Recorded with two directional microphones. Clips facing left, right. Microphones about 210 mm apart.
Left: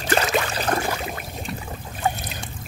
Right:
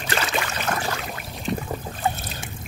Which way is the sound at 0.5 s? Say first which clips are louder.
Left 3 dB; 35° left (ahead or behind).